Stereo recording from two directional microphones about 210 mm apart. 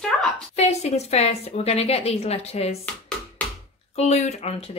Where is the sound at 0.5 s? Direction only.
30° left (ahead or behind).